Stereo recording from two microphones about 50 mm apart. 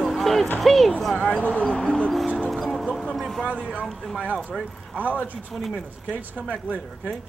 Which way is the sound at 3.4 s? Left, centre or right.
Left.